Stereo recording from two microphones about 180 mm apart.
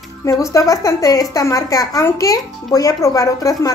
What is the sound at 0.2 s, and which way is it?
A woman's voice, 15° left (ahead or behind).